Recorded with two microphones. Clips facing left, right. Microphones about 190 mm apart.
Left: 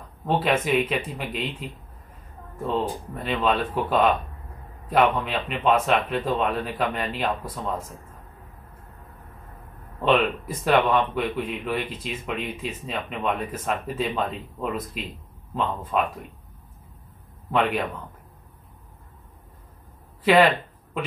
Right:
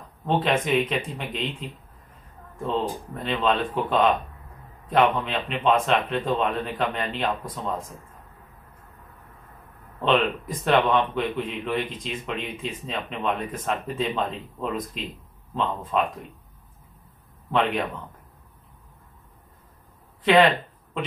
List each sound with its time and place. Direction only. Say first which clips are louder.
0.3 s a man's voice: even; 5° left (ahead or behind)
10.0 s a man's voice: left 1 dB; 5° left (ahead or behind)
17.5 s speech: even; 5° left (ahead or behind)
20.2 s a sound: even; 5° left (ahead or behind)